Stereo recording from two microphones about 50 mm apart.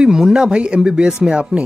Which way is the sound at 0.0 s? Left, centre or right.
Centre.